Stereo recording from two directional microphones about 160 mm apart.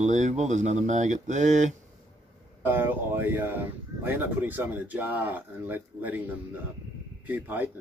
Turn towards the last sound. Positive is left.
turn(degrees=-10)  # may be behind; listen again after turning